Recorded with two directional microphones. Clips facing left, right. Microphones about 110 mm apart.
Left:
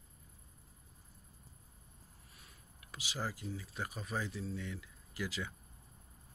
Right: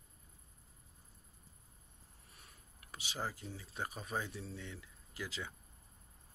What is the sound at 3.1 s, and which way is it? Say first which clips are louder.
Speech: left 2 dB; 30° right (ahead or behind).